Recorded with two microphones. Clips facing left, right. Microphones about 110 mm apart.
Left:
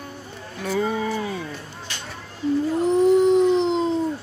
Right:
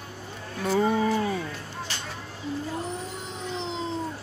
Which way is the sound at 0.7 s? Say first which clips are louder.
Even; 20° right (ahead or behind).